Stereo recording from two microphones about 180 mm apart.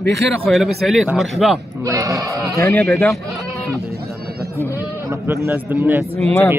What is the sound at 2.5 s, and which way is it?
Speech, 15° left (ahead or behind).